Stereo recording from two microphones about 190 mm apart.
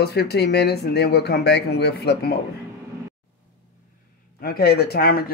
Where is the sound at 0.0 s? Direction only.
60° left (ahead or behind).